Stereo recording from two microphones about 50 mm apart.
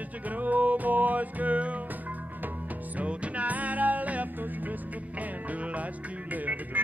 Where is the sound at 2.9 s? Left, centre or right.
Right.